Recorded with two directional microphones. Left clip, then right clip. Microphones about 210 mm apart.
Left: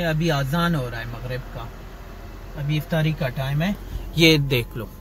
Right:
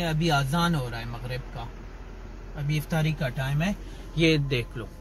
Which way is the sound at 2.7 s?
10° right (ahead or behind).